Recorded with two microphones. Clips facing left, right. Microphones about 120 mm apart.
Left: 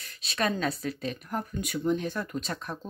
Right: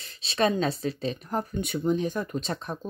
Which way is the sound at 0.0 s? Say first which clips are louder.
Right 5 dB; 25° right (ahead or behind).